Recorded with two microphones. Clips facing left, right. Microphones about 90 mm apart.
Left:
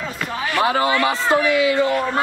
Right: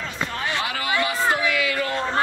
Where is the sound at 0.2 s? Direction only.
20° right (ahead or behind).